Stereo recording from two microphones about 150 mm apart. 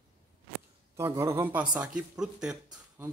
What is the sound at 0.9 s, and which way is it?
Speech, 20° right (ahead or behind).